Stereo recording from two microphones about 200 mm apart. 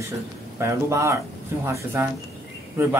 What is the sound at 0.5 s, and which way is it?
Speech, 15° right (ahead or behind).